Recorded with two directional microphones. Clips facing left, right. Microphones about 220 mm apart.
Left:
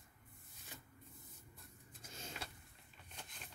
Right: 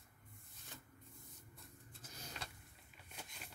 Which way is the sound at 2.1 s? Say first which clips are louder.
Left 3 dB; 25° left (ahead or behind).